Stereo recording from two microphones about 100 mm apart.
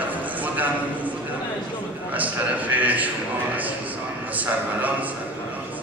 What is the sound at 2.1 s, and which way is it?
Speech, 15° right (ahead or behind).